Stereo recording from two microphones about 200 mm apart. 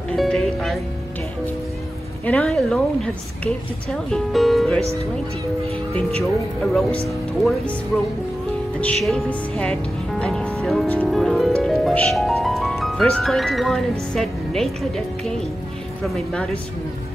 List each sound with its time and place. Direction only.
0.1 s music: centre (ahead or behind)
2.2 s speech: 5° left (ahead or behind)
5.9 s speech: 5° left (ahead or behind)
8.8 s speech: 5° left (ahead or behind)